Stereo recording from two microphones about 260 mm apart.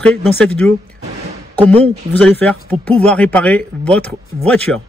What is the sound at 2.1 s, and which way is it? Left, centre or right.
Speech, centre.